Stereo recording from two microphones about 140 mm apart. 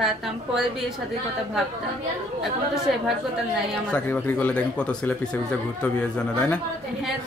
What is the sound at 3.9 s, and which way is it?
A man's voice, 10° left (ahead or behind).